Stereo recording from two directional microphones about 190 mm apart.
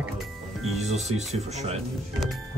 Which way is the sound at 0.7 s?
35° right (ahead or behind).